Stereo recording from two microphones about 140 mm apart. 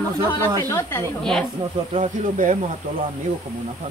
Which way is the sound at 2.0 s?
65° right (ahead or behind).